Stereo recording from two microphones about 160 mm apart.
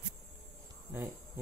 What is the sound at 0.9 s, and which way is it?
Insect, 15° right (ahead or behind).